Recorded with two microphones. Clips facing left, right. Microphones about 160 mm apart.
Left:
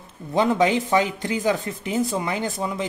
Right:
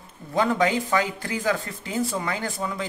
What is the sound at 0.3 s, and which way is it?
Speech, 20° left (ahead or behind).